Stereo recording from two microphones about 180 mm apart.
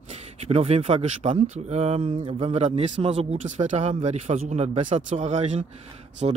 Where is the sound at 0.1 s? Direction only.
35° right (ahead or behind).